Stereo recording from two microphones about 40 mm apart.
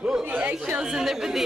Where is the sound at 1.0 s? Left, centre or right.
Centre.